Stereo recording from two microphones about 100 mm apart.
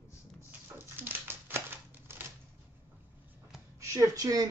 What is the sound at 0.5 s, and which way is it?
Crumpling, 20° right (ahead or behind).